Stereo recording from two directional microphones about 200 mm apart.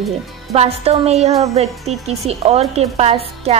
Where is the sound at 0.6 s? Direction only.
30° right (ahead or behind).